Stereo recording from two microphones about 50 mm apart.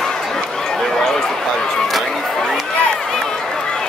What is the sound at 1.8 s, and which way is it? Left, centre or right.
Chatter, centre.